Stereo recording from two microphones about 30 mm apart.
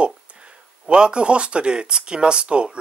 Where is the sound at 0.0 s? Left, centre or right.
Right.